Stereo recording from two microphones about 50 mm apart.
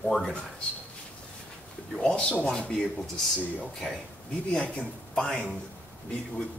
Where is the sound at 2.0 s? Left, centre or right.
Centre.